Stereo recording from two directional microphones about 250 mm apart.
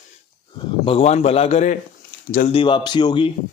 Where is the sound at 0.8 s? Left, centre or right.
Left.